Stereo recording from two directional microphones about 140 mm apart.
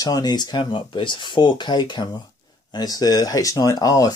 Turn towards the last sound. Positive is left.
turn(degrees=25)  # may be behind; listen again after turning